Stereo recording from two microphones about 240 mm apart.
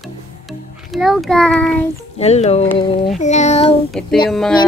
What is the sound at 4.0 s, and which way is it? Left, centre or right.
Speech, centre.